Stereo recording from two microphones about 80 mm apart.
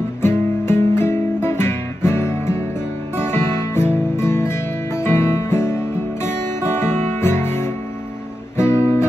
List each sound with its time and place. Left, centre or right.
0.2 s guitar: left
3.2 s music: left
6.2 s guitar: left